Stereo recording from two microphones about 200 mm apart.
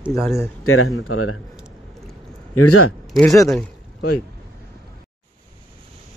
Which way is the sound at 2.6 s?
90° left.